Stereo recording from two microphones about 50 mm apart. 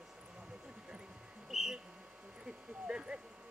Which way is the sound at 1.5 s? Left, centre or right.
Centre.